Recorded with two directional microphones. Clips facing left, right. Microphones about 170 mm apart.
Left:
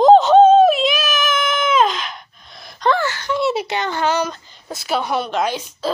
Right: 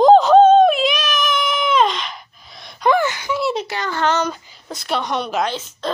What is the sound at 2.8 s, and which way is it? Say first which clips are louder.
Wail: right 2 dB; 15° right (ahead or behind).